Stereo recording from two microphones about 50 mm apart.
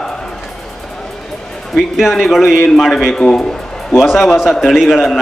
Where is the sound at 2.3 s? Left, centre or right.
Centre.